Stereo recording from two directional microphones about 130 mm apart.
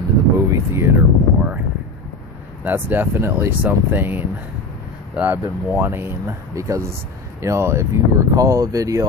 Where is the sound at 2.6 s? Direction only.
15° right (ahead or behind).